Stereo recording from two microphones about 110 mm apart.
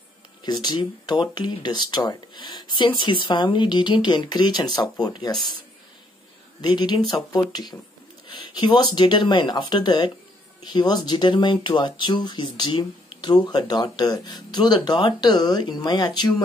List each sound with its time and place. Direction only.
0.4 s speech: 40° left (ahead or behind)
6.6 s speech: 40° left (ahead or behind)